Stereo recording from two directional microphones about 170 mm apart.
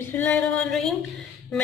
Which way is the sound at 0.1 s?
10° left (ahead or behind).